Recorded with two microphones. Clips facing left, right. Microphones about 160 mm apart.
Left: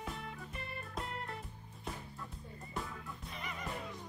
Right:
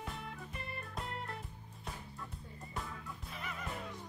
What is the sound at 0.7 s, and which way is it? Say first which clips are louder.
Music: left 1 dB; centre (ahead or behind).